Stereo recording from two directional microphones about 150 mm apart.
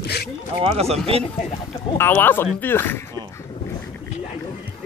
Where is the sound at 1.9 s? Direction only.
15° left (ahead or behind).